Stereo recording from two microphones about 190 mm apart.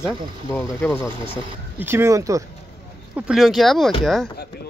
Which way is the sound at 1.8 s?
15° right (ahead or behind).